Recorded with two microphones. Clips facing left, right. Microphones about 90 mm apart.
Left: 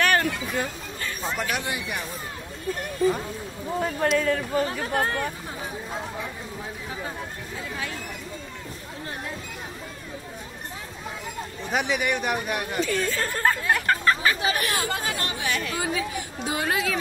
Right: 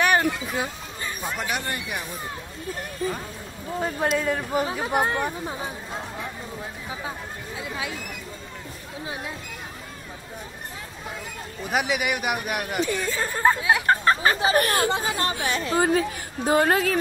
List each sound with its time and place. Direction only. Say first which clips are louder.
0.0 s a sound: right 1 dB; 15° right (ahead or behind)
1.3 s speech: left 1 dB; centre (ahead or behind)
3.1 s speech: left 5 dB; 10° left (ahead or behind)
3.8 s speech: left 1 dB; 10° right (ahead or behind)
11.6 s speech: right 1 dB; 5° right (ahead or behind)
13.8 s speech: right 2 dB; 30° right (ahead or behind)
14.9 s speech: right 4 dB; 25° right (ahead or behind)
15.8 s a woman's voice: right 6 dB; 45° right (ahead or behind)